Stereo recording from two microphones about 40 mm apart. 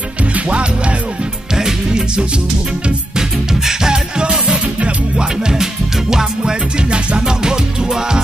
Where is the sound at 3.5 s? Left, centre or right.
Centre.